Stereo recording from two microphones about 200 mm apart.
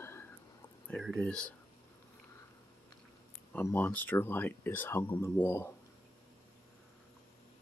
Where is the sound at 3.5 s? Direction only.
10° left (ahead or behind).